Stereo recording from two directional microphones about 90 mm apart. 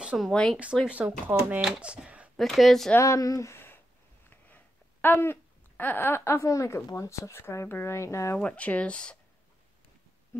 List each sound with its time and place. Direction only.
0.2 s speech: 5° left (ahead or behind)
0.8 s speech: 15° right (ahead or behind)
2.3 s speech: centre (ahead or behind)
3.0 s speech: 40° left (ahead or behind)
5.0 s speech: 25° left (ahead or behind)
8.4 s speech: 15° left (ahead or behind)